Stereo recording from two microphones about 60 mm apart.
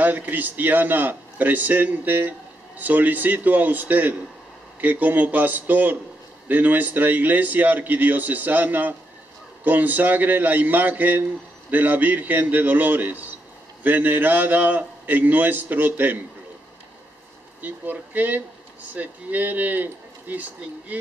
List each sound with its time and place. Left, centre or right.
0.0 s a man's voice: right
17.6 s a man's voice: right